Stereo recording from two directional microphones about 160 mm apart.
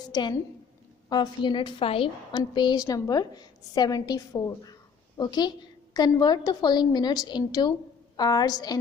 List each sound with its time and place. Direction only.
0.1 s a woman's voice: 25° left (ahead or behind)